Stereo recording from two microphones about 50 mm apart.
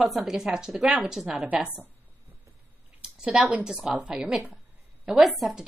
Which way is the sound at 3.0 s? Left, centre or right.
Centre.